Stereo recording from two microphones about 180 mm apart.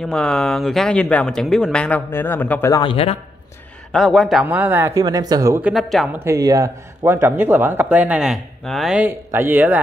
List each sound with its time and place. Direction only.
0.0 s speech: 5° left (ahead or behind)
2.8 s a man's voice: 30° left (ahead or behind)
3.9 s speech: centre (ahead or behind)
6.1 s speech: 15° right (ahead or behind)